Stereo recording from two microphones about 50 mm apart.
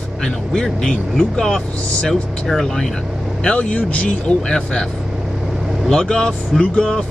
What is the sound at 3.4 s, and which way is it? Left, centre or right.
Speech, left.